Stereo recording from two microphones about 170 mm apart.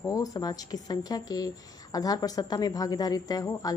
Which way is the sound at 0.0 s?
20° left (ahead or behind).